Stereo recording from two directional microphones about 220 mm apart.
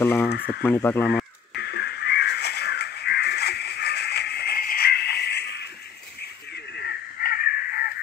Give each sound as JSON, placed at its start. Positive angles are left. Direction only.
{"t": 0.0, "sound": "speech", "side_deg": 10}
{"t": 0.3, "sound": "speech", "side_deg": 45}
{"t": 0.7, "sound": "speech", "side_deg": 10}
{"t": 1.5, "sound": "caw", "side_deg": 50}